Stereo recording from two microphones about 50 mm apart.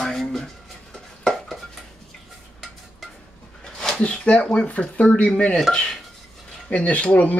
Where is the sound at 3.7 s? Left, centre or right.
Centre.